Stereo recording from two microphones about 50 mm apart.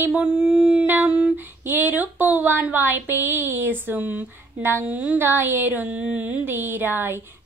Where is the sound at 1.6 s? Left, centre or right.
Right.